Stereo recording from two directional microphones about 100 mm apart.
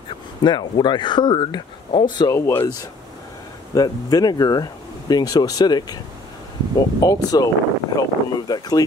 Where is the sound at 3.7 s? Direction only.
40° left (ahead or behind).